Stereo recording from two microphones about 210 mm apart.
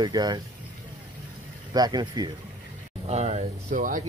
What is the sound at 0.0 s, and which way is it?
Speech, 20° right (ahead or behind).